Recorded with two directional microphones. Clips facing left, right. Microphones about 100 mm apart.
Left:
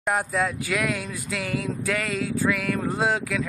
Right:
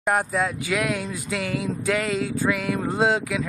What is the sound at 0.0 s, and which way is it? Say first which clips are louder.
Speech: right 2 dB; centre (ahead or behind).